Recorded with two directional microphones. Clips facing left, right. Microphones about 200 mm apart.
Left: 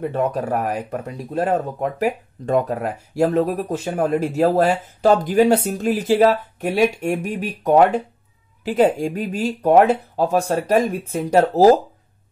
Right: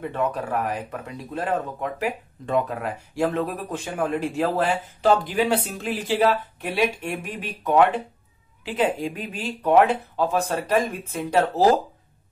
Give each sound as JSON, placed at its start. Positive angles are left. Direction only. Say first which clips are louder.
{"t": 0.1, "sound": "speech", "louder": "left 4 dB", "side_deg": 40}